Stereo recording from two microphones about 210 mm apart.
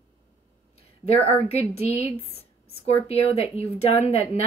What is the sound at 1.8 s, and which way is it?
Speech, 30° left (ahead or behind).